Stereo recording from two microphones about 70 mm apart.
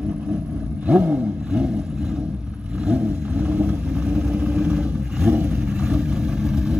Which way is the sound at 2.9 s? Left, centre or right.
Centre.